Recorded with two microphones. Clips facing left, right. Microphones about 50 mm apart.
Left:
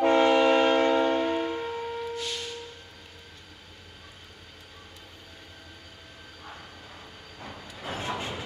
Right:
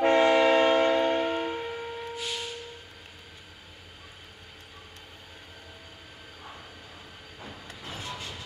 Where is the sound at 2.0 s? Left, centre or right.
Centre.